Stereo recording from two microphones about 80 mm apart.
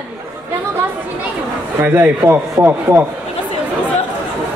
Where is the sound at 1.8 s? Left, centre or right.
Right.